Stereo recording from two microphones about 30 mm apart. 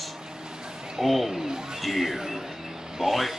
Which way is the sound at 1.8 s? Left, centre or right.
Centre.